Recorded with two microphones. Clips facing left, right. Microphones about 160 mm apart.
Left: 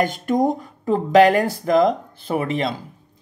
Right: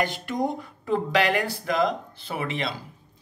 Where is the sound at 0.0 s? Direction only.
45° left (ahead or behind).